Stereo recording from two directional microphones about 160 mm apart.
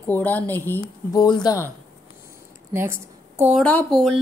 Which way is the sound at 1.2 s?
25° left (ahead or behind).